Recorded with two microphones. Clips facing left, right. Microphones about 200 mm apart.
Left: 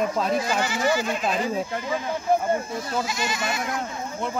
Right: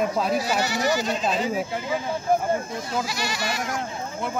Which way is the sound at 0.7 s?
40° right (ahead or behind).